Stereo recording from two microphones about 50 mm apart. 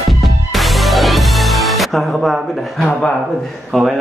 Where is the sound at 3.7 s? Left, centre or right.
Centre.